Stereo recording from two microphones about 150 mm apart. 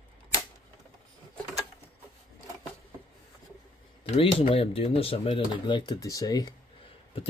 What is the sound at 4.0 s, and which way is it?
Speech, 40° left (ahead or behind).